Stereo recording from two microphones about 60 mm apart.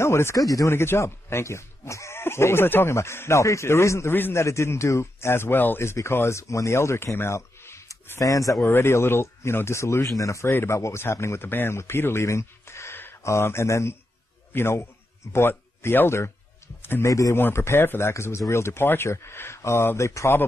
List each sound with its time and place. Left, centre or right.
0.0 s speech: left
0.4 s speech: left
0.7 s speech: left
4.1 s speech: left
4.4 s speech: left
5.8 s speech: left
8.2 s speech: left
8.6 s speech: left
10.5 s a man's voice: left
17.0 s speech: left
17.4 s speech: left